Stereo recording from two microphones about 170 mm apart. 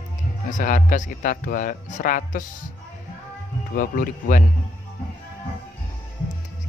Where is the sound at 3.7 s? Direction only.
55° left (ahead or behind).